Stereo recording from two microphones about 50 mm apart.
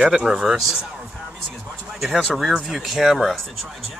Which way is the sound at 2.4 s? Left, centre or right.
Centre.